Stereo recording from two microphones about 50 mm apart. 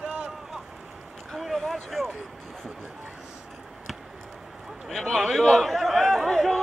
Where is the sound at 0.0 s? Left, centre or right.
Right.